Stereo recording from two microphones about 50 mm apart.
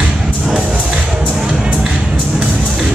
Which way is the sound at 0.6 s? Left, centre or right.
Right.